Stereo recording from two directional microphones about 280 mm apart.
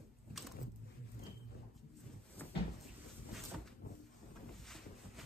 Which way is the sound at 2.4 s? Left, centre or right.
Centre.